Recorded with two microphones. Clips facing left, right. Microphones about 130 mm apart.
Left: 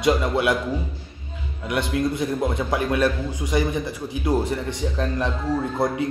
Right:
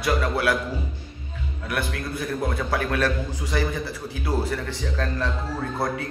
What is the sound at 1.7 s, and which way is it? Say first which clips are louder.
A man's voice: left 6 dB; 20° left (ahead or behind).